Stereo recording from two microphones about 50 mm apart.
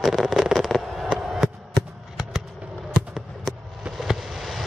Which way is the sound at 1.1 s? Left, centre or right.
Centre.